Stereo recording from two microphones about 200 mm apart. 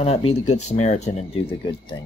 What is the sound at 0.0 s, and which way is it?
Speech, 30° left (ahead or behind).